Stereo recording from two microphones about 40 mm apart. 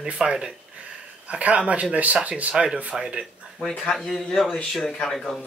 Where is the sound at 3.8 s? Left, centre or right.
Centre.